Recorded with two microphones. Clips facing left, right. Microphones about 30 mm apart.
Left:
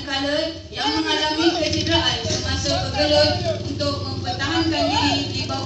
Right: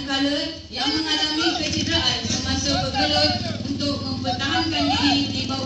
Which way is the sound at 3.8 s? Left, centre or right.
Left.